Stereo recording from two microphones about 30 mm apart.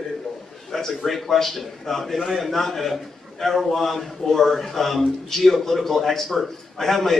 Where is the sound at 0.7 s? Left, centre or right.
Centre.